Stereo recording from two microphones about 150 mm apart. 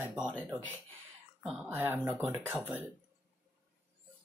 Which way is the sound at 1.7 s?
15° right (ahead or behind).